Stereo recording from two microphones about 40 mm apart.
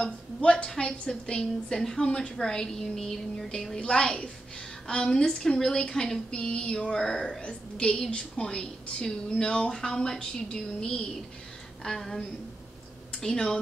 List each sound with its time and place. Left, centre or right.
0.0 s a woman's voice: left
7.4 s a woman's voice: left
13.2 s a woman's voice: centre